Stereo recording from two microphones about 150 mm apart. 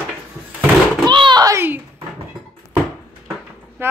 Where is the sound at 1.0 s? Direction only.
30° right (ahead or behind).